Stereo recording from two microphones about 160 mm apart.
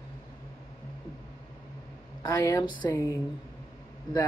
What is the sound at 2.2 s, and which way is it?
Speech, 25° left (ahead or behind).